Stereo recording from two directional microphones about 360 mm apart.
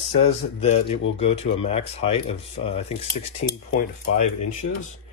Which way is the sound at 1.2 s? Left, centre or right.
Centre.